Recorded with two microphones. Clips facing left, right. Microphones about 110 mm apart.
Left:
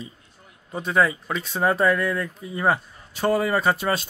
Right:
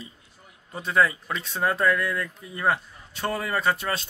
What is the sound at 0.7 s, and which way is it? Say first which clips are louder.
A man's voice: left 2 dB; centre (ahead or behind).